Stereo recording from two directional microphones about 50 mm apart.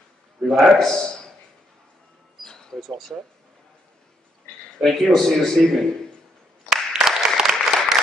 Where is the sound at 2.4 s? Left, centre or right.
Centre.